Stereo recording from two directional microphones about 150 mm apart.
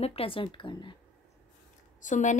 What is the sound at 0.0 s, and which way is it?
Speech, 40° left (ahead or behind).